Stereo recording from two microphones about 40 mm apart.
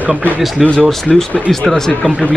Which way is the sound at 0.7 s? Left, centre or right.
Centre.